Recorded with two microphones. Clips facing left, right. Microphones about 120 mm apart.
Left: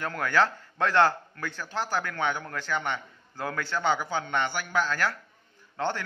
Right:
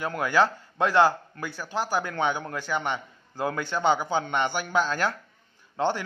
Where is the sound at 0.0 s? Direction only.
15° right (ahead or behind).